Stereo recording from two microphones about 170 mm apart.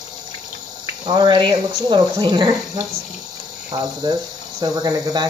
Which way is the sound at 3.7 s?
20° right (ahead or behind).